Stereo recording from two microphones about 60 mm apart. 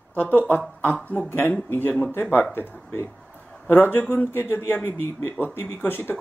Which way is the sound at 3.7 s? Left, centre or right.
Left.